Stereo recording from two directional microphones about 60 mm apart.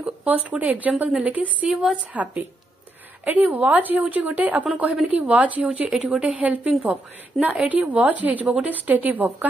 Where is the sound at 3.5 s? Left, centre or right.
Right.